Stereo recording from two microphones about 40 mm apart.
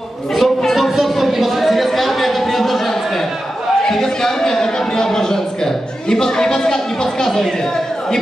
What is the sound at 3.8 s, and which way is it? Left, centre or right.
A man's voice, centre.